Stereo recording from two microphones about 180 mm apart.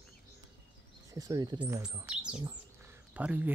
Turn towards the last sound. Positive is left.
turn(degrees=-10)  # may be behind; listen again after turning